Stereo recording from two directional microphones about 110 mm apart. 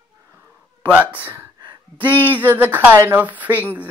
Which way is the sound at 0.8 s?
15° right (ahead or behind).